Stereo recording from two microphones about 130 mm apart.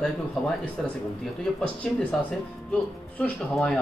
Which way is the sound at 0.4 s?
Centre (ahead or behind).